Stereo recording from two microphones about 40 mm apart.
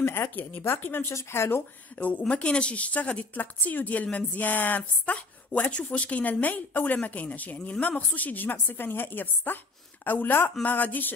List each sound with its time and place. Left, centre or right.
0.0 s a sound: left
0.6 s speech: left
1.3 s speech: left
2.0 s a woman's voice: left
3.3 s a woman's voice: left
5.0 s a woman's voice: left